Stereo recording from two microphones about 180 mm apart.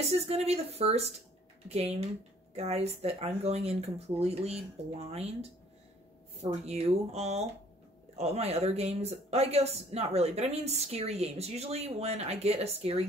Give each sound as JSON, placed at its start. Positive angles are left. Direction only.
{"t": 0.0, "sound": "speech", "side_deg": -35}
{"t": 6.4, "sound": "speech", "side_deg": -35}